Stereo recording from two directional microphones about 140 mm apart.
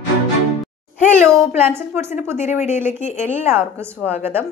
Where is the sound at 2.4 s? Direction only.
55° left (ahead or behind).